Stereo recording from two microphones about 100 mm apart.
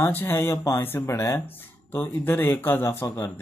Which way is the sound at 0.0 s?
20° left (ahead or behind).